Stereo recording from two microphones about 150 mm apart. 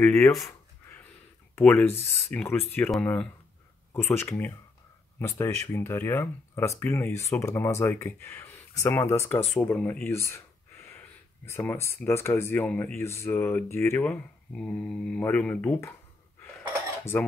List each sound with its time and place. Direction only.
0.0 s speech: 15° left (ahead or behind)
1.6 s speech: 15° left (ahead or behind)
17.1 s speech: 10° left (ahead or behind)